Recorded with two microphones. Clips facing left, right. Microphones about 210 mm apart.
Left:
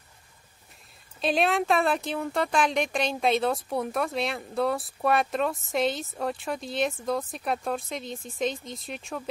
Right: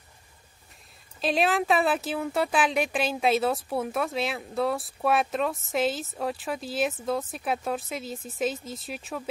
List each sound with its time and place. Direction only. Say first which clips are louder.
1.2 s speech: even; centre (ahead or behind)